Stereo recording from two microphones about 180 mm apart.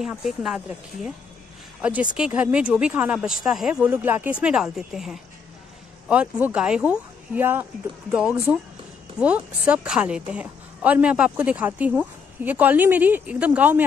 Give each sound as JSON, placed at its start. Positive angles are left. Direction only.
{"t": 0.0, "sound": "a woman's voice", "side_deg": 0}